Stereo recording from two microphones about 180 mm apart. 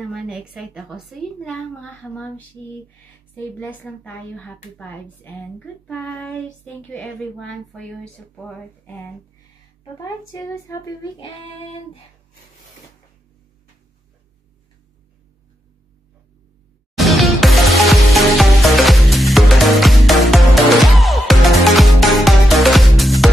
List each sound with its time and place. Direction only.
0.0 s a woman's voice: centre (ahead or behind)
9.9 s speech: 15° left (ahead or behind)
16.9 s music: centre (ahead or behind)